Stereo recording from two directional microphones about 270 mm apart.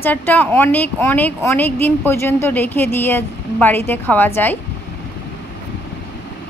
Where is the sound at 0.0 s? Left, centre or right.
Centre.